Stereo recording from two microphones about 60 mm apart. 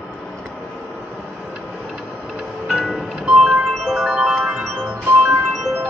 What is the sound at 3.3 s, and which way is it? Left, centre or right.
Music, centre.